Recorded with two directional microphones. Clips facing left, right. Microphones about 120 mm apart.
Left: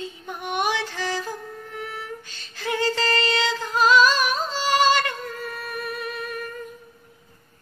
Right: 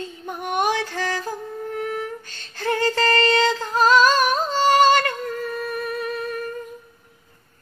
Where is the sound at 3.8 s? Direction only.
45° right (ahead or behind).